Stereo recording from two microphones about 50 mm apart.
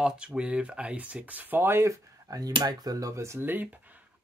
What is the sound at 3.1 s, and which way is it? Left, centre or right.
Speech, right.